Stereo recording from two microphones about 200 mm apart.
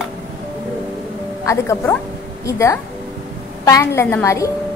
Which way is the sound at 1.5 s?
15° left (ahead or behind).